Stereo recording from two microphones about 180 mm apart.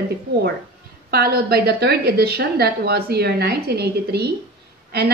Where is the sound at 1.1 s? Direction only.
60° right (ahead or behind).